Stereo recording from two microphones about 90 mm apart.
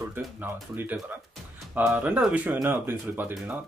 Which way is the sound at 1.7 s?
20° right (ahead or behind).